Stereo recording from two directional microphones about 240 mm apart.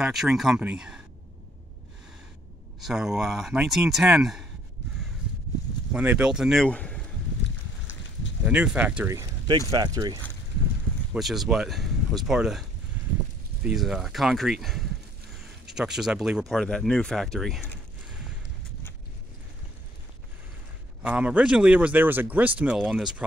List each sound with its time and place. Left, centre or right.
0.0 s speech: centre
2.8 s speech: centre
5.9 s speech: centre
8.5 s speech: centre
11.1 s speech: centre
13.7 s speech: centre
21.0 s speech: centre